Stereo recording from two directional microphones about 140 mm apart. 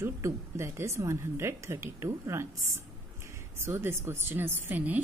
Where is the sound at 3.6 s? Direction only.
15° right (ahead or behind).